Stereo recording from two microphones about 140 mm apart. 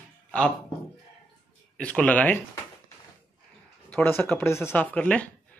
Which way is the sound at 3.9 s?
15° left (ahead or behind).